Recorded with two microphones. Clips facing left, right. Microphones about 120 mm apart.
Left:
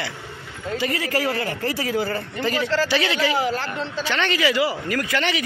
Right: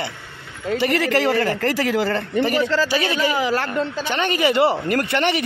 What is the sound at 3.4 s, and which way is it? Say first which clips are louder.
Speech: right 3 dB; 75° right (ahead or behind).